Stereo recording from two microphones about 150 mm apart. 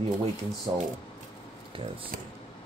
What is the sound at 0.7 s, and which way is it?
Speech, 30° right (ahead or behind).